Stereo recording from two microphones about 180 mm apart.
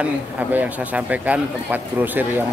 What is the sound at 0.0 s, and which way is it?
A man's voice, 10° right (ahead or behind).